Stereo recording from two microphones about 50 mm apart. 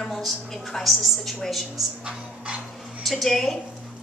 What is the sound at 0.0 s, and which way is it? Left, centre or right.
A woman's voice, centre.